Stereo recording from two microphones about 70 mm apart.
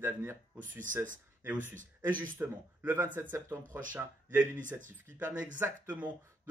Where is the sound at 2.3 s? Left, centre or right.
Right.